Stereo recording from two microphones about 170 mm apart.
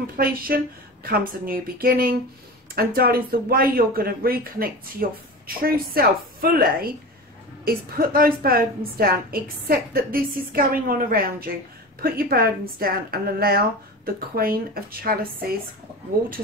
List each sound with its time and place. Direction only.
0.0 s a woman's voice: 60° right (ahead or behind)